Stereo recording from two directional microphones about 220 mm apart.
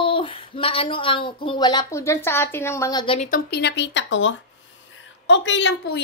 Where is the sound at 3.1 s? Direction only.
40° left (ahead or behind).